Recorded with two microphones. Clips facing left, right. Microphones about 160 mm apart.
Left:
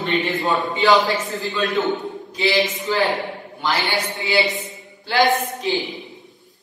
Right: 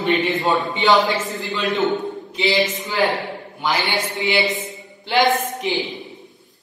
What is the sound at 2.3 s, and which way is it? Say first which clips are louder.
A woman's voice: even; 20° right (ahead or behind).